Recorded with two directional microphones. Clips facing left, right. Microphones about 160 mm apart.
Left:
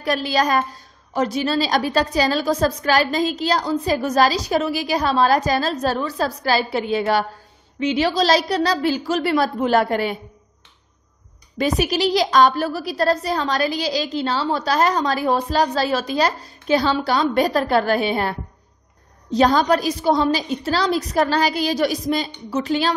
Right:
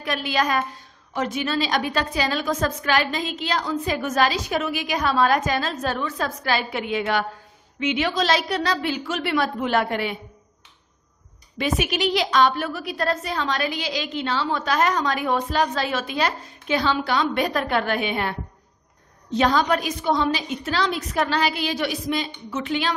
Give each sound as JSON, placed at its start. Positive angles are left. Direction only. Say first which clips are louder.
{"t": 0.0, "sound": "a woman's voice", "louder": "left 4 dB", "side_deg": 35}
{"t": 11.5, "sound": "a woman's voice", "louder": "left 4 dB", "side_deg": 35}
{"t": 19.3, "sound": "a woman's voice", "louder": "left 4 dB", "side_deg": 35}